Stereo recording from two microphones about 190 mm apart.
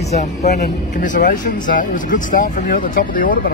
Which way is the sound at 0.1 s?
35° left (ahead or behind).